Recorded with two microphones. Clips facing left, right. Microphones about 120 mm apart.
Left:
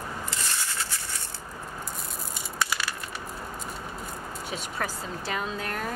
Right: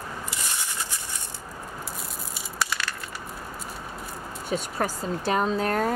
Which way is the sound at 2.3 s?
Centre (ahead or behind).